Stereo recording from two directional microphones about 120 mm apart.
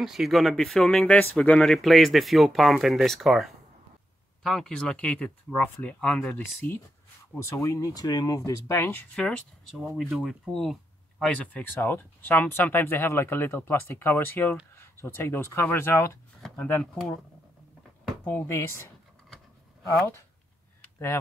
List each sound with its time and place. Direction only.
0.0 s speech: centre (ahead or behind)
7.3 s speech: 25° left (ahead or behind)
9.1 s speech: 5° left (ahead or behind); by 16.2 s 20° left (ahead or behind)
18.2 s speech: 20° left (ahead or behind)